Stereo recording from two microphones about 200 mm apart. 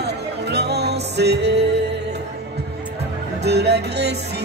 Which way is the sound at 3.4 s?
55° right (ahead or behind).